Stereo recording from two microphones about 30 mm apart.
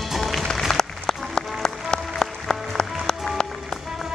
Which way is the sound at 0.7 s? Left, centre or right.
Centre.